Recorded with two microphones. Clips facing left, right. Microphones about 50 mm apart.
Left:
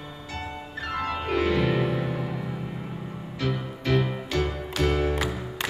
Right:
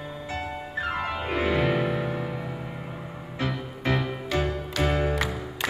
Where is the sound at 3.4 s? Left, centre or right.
Right.